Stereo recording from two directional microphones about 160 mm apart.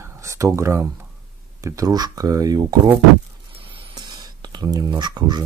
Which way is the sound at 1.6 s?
20° right (ahead or behind).